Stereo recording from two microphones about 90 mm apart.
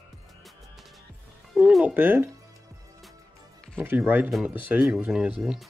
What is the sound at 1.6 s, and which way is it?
Music, 15° right (ahead or behind).